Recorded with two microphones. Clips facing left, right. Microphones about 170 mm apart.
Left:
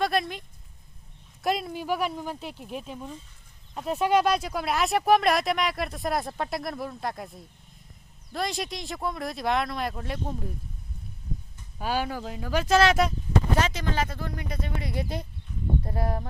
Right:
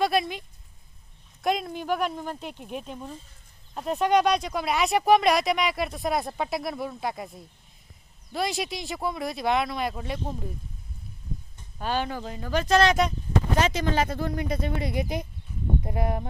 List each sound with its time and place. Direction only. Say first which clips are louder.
0.0 s speech: right 2 dB; centre (ahead or behind)
11.8 s speech: even; 10° left (ahead or behind)
13.7 s speech: right 4 dB; 20° right (ahead or behind)